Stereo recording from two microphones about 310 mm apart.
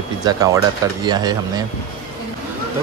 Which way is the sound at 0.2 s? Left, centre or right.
Centre.